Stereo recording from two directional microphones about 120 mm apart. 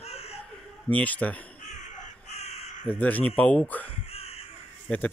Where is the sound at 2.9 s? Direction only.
15° left (ahead or behind).